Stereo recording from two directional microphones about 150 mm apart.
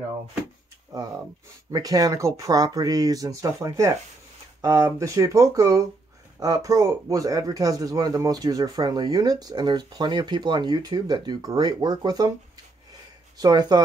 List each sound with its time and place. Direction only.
1.7 s speech: 25° right (ahead or behind)
13.4 s speech: 25° right (ahead or behind)